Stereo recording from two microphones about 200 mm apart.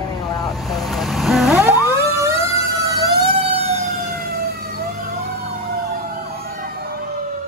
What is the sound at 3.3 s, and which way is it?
Emergency vehicle, 30° right (ahead or behind).